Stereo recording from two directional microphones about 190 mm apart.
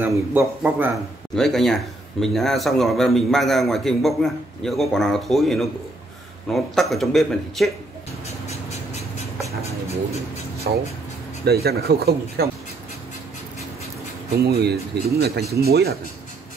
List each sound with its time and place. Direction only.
0.0 s speech: 10° right (ahead or behind)
1.3 s speech: centre (ahead or behind)
8.5 s a sound: 35° left (ahead or behind)
11.4 s speech: 55° right (ahead or behind)
14.4 s speech: 55° right (ahead or behind)